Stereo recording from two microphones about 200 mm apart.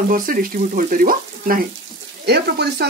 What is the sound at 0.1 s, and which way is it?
Speech, 45° right (ahead or behind).